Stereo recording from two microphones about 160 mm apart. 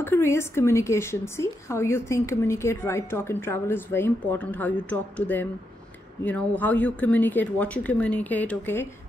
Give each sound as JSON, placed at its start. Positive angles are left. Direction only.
{"t": 0.0, "sound": "a woman's voice", "side_deg": 15}